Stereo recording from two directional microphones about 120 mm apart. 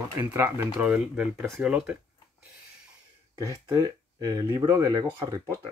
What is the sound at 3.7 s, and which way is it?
Speech, 30° right (ahead or behind).